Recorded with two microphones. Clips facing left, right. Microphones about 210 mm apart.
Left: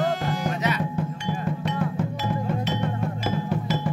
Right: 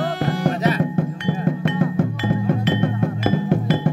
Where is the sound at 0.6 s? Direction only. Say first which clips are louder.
Right 6 dB; 35° right (ahead or behind).